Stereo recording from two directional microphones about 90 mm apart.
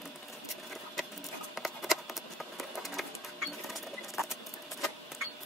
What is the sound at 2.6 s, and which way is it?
Printer, centre (ahead or behind).